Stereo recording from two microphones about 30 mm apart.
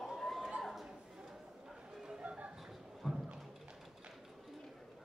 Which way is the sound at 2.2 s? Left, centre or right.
Right.